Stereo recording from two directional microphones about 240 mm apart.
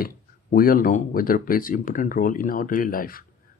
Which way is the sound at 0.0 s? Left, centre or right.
Left.